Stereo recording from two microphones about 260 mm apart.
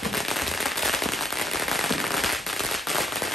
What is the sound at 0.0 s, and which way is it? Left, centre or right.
Firecracker, centre.